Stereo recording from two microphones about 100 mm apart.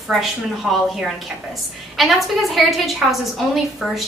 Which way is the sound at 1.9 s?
Centre (ahead or behind).